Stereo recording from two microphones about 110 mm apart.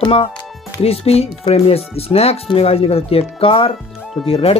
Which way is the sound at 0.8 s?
65° left (ahead or behind).